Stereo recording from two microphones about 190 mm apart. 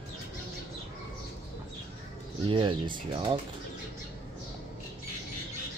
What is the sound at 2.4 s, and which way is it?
Speech, 25° right (ahead or behind).